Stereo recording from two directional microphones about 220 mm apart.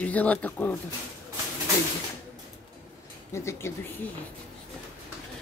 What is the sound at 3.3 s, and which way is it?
Speech, 10° left (ahead or behind).